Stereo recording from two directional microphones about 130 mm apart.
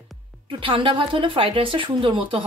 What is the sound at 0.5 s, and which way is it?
A woman's voice, 40° right (ahead or behind).